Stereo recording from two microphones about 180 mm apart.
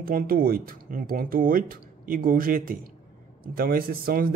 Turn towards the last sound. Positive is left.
turn(degrees=-55)  # may be behind; listen again after turning